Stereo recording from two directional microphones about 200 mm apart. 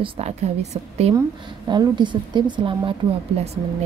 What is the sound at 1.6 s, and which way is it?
A woman's voice, 20° right (ahead or behind).